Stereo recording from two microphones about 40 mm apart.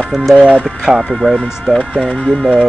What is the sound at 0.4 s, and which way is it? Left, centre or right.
Speech, right.